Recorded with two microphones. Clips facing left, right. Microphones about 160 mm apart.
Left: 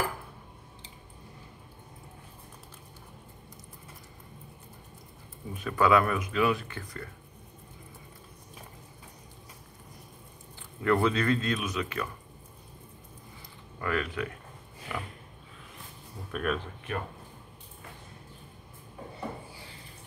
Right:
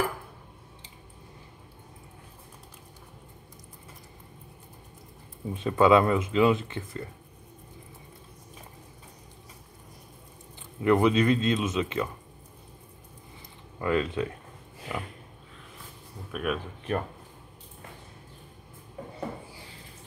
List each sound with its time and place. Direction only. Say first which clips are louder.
5.5 s speech: right 4 dB; 25° right (ahead or behind)
10.8 s speech: right 4 dB; 20° right (ahead or behind)
13.7 s speech: right 5 dB; 20° right (ahead or behind)
16.3 s speech: right 1 dB; 5° right (ahead or behind)